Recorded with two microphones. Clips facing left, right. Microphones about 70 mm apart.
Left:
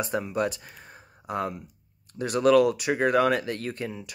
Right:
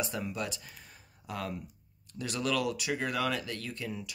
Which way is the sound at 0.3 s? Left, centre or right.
Left.